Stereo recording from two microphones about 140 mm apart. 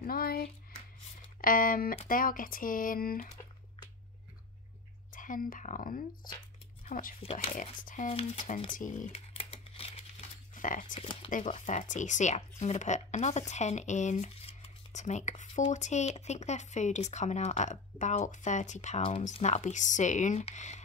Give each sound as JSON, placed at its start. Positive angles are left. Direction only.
{"t": 0.0, "sound": "a sound", "side_deg": 90}
{"t": 1.4, "sound": "speech", "side_deg": 80}
{"t": 5.1, "sound": "speech", "side_deg": 70}
{"t": 7.8, "sound": "speech", "side_deg": 65}
{"t": 8.1, "sound": "speech", "side_deg": 45}
{"t": 8.7, "sound": "speech", "side_deg": 65}
{"t": 9.1, "sound": "crumpling", "side_deg": 45}
{"t": 10.5, "sound": "speech", "side_deg": 70}